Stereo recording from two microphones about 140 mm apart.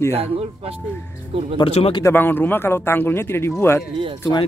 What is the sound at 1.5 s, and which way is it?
Speech, 40° left (ahead or behind).